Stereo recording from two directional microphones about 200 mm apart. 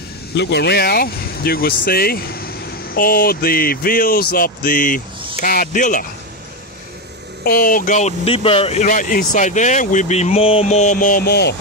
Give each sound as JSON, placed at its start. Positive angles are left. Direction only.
{"t": 0.4, "sound": "speech", "side_deg": 55}
{"t": 7.4, "sound": "speech", "side_deg": 45}